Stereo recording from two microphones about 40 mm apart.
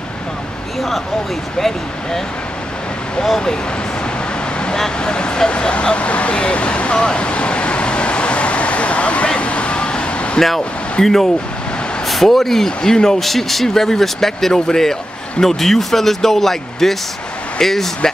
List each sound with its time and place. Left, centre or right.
4.9 s vehicle: left
11.0 s speech: centre
13.2 s speech: centre